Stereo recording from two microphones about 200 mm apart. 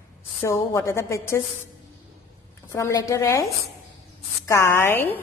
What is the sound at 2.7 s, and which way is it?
Speech, 15° left (ahead or behind).